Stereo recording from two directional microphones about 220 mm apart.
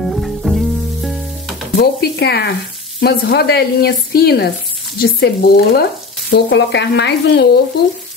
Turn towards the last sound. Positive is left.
turn(degrees=50)  # may be behind; listen again after turning